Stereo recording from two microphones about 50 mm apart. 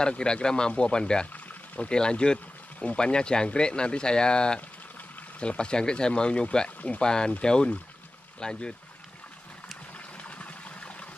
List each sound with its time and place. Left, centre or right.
0.2 s speech: centre
1.2 s pour: left
2.0 s speech: centre
9.9 s a sound: left